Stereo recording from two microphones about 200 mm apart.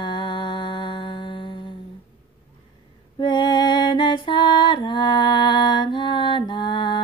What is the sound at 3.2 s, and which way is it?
Music, 20° left (ahead or behind).